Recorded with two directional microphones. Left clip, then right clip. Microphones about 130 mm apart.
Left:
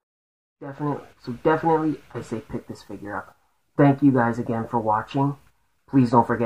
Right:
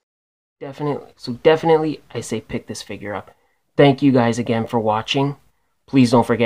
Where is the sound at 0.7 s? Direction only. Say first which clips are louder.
Right 4 dB; 30° right (ahead or behind).